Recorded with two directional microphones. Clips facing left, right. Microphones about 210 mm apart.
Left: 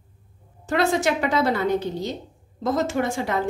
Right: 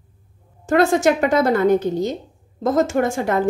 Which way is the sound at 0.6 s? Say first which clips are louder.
Right 6 dB; 45° right (ahead or behind).